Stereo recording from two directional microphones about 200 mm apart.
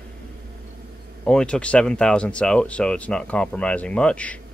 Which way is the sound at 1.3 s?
5° left (ahead or behind).